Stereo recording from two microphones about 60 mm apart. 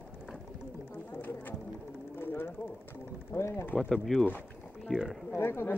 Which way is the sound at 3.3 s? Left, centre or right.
Left.